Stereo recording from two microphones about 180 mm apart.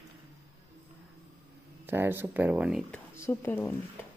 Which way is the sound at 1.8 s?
10° right (ahead or behind).